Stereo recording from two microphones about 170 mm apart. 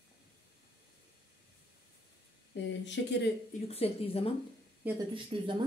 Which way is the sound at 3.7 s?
35° left (ahead or behind).